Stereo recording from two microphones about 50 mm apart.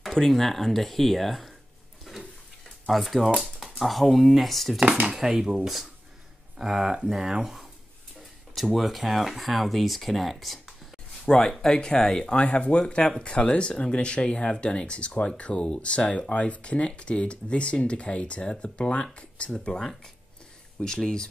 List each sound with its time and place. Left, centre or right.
0.3 s speech: centre
2.1 s a sound: centre
2.9 s speech: centre
5.1 s speech: centre
11.2 s speech: centre